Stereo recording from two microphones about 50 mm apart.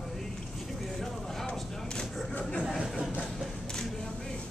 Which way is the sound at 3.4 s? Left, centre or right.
Centre.